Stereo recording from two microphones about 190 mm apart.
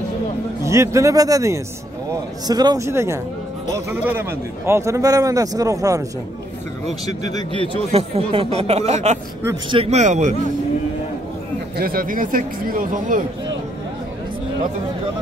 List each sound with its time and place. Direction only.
0.7 s a man's voice: 15° right (ahead or behind)
6.9 s speech: 35° right (ahead or behind)
11.7 s speech: 50° right (ahead or behind)